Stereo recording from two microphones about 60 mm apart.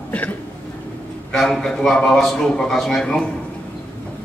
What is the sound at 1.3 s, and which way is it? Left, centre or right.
A man's voice, centre.